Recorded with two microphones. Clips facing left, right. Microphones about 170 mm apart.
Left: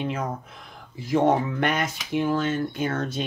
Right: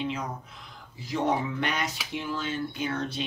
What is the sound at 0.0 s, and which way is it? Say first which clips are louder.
Speech: left 4 dB; 50° left (ahead or behind).